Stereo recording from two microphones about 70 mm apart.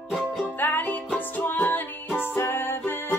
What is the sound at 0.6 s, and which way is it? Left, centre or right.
Music, left.